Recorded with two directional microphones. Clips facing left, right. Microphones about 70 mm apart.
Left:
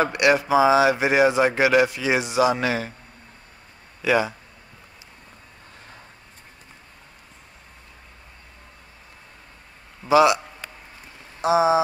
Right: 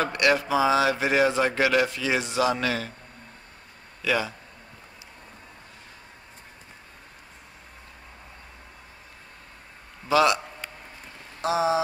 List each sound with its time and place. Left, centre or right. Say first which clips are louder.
0.0 s speech: left 4 dB; centre
4.0 s speech: left 5 dB; left
10.0 s a man's voice: left 4 dB; centre
11.4 s speech: left 5 dB; centre